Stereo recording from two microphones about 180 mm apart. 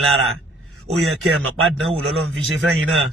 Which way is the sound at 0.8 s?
Centre (ahead or behind).